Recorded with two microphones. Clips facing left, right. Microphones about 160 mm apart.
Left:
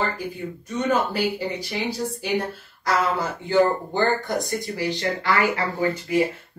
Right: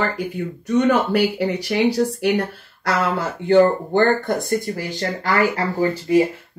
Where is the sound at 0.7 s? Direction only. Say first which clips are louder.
Right 6 dB; 70° right (ahead or behind); by 6.2 s 35° right (ahead or behind).